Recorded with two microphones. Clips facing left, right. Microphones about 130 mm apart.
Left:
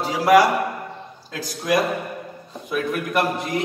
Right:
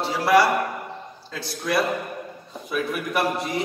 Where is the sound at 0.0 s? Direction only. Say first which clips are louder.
Left 3 dB; 15° left (ahead or behind).